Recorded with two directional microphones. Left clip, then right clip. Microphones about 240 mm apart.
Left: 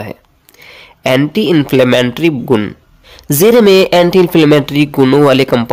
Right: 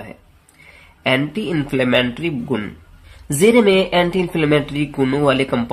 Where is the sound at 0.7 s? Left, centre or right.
Left.